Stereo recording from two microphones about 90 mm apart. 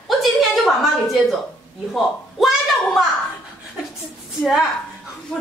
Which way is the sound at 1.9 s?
Centre (ahead or behind).